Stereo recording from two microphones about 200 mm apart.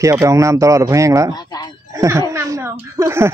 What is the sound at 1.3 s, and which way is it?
Speech, 20° left (ahead or behind).